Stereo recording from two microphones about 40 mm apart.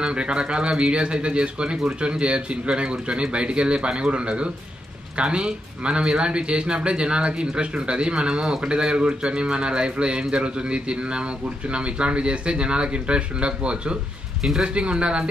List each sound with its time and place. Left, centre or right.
0.0 s speech: right